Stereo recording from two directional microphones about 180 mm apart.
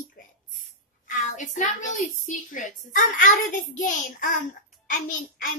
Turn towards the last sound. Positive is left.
turn(degrees=50)  # may be behind; listen again after turning